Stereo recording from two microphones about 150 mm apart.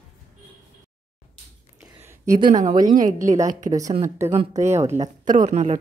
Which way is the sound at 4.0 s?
20° right (ahead or behind).